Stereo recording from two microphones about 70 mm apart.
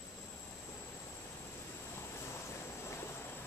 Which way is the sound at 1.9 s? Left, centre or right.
Left.